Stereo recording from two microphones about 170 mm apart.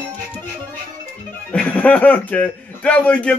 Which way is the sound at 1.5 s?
5° left (ahead or behind).